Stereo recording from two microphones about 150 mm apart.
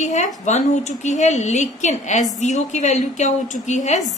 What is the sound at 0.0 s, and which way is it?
A woman's voice, 55° left (ahead or behind).